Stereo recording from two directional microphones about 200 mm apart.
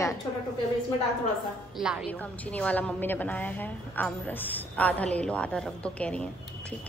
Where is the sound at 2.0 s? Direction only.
5° left (ahead or behind).